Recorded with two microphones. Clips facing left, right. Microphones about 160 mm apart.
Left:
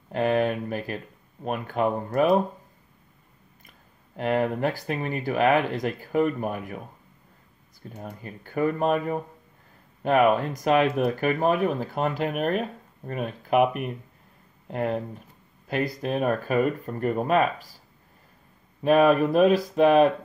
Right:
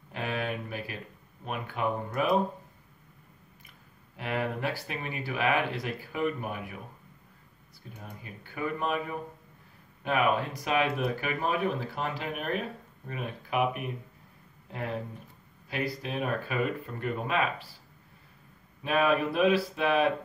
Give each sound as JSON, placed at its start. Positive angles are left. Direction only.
{"t": 0.1, "sound": "speech", "side_deg": 45}
{"t": 4.2, "sound": "speech", "side_deg": 45}
{"t": 7.9, "sound": "speech", "side_deg": 45}
{"t": 15.7, "sound": "speech", "side_deg": 45}
{"t": 18.8, "sound": "speech", "side_deg": 45}